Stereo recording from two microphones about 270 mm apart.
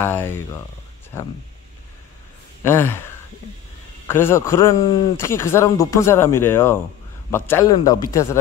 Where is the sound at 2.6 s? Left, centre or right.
Centre.